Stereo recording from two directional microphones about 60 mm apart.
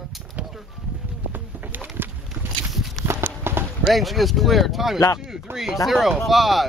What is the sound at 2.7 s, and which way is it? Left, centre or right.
Horse, centre.